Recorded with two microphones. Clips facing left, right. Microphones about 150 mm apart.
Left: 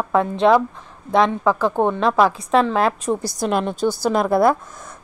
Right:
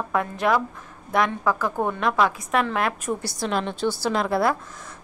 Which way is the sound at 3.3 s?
45° left (ahead or behind).